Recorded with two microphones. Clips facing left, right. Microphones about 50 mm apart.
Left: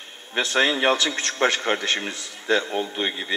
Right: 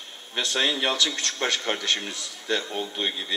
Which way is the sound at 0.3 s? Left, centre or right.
Left.